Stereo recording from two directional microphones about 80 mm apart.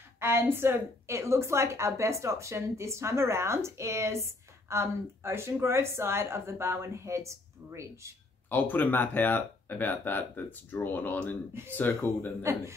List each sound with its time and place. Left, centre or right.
0.2 s a woman's voice: right
8.5 s speech: left